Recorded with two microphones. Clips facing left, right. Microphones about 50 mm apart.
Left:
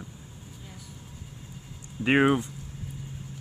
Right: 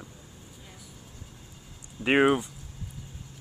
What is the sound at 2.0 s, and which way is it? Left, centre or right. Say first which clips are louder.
Speech: even; centre.